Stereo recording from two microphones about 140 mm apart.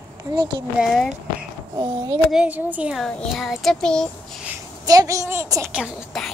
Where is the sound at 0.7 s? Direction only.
Centre (ahead or behind).